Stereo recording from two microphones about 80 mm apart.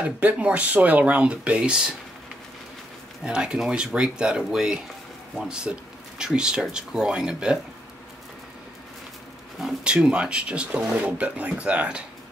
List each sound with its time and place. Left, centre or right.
0.0 s speech: centre
3.3 s speech: centre
9.8 s speech: centre